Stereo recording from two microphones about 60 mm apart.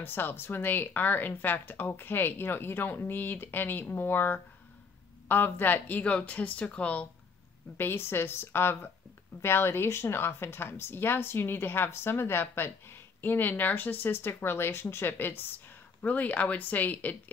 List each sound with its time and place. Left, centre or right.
0.0 s speech: left
7.7 s speech: left